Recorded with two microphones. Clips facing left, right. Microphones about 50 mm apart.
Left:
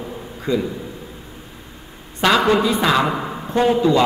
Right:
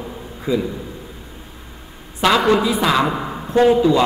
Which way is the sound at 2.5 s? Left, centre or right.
Centre.